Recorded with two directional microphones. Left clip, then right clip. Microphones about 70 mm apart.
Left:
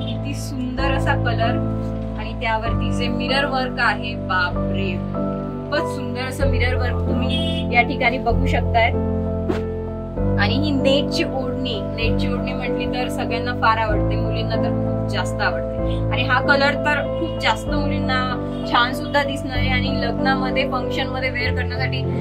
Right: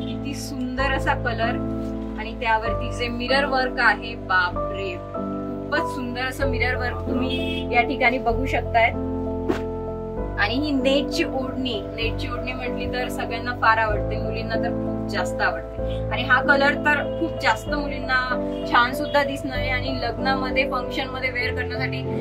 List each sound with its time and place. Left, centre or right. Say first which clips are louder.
0.8 s speech: left 2 dB; centre
7.7 s speech: left 1 dB; centre
10.4 s speech: left 1 dB; centre
13.6 s speech: even; centre
16.2 s speech: left 1 dB; centre